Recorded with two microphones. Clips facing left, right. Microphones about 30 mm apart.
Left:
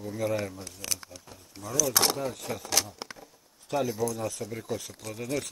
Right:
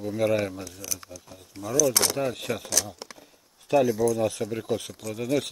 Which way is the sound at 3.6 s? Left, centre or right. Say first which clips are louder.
Right 8 dB; centre.